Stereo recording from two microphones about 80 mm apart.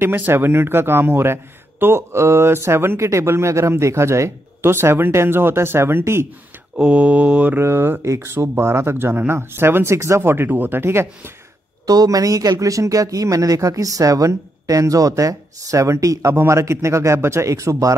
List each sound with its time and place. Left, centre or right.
0.0 s speech: right
6.8 s speech: centre
7.5 s speech: right
11.8 s speech: right